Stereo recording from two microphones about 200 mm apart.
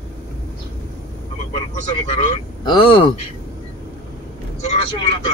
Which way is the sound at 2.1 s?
35° left (ahead or behind).